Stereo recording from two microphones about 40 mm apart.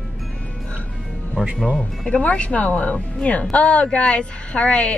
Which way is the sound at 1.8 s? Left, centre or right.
Left.